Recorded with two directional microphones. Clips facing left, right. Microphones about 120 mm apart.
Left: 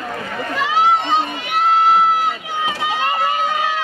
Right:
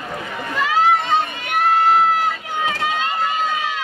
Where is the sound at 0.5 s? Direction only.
15° left (ahead or behind).